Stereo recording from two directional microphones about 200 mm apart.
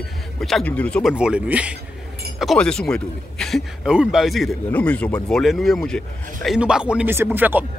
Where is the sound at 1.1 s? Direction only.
5° right (ahead or behind).